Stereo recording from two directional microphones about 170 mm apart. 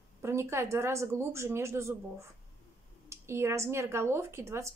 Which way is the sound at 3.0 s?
15° right (ahead or behind).